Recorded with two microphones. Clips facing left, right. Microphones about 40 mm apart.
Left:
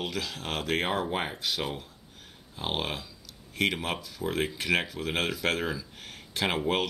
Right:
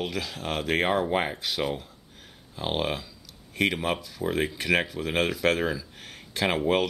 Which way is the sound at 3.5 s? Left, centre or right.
Centre.